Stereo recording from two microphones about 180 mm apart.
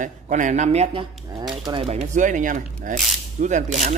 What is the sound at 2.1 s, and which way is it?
Speech, 45° right (ahead or behind).